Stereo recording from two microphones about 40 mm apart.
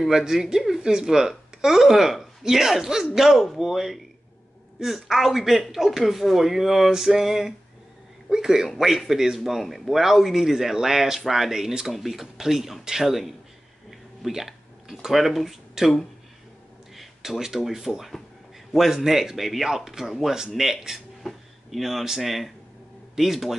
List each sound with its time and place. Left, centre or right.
0.0 s speech: centre
11.9 s speech: centre
13.8 s a sound: centre
17.4 s speech: centre